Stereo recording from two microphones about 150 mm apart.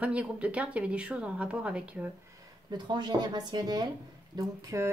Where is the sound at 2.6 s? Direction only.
30° right (ahead or behind).